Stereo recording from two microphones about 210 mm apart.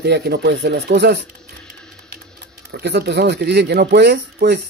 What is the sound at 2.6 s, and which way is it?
A man's voice, 55° right (ahead or behind).